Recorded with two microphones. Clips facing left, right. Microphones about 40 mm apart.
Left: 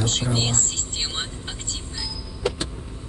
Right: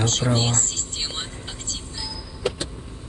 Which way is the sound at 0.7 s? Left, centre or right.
Left.